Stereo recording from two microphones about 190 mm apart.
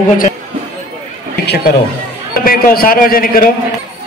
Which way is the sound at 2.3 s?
50° left (ahead or behind).